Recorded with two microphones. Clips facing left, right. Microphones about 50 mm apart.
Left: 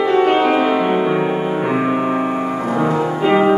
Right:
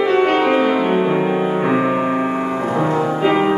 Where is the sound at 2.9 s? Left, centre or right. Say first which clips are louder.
Left 2 dB; centre.